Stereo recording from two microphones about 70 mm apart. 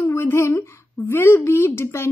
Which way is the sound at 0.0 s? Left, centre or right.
Left.